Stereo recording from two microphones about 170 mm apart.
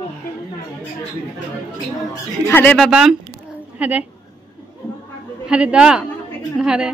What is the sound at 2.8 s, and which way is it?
A woman's voice, 5° right (ahead or behind).